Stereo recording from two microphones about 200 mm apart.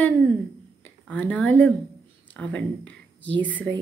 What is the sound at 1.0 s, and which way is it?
A woman's voice, 5° left (ahead or behind).